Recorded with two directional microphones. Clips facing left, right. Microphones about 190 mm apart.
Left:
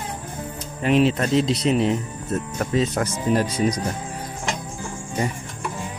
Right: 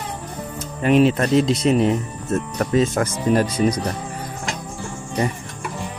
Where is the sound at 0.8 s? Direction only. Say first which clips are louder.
Right 3 dB; 50° right (ahead or behind).